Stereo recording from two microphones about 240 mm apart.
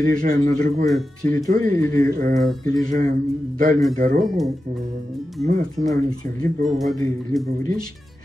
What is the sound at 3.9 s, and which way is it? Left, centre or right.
Speech, right.